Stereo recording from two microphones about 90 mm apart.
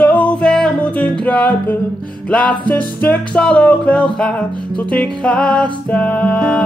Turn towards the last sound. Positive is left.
turn(degrees=15)  # may be behind; listen again after turning